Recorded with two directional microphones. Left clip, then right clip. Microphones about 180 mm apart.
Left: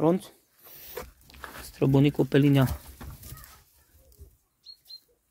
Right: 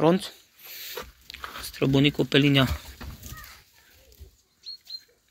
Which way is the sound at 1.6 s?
30° left (ahead or behind).